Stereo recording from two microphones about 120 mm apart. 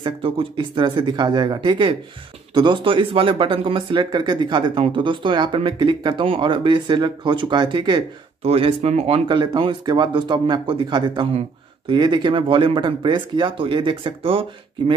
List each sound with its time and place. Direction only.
0.0 s speech: 45° right (ahead or behind)
8.4 s speech: 55° right (ahead or behind)
9.4 s speech: 40° right (ahead or behind)